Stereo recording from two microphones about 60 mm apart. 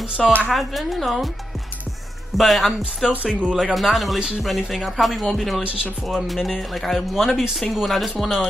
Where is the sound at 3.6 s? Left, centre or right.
Centre.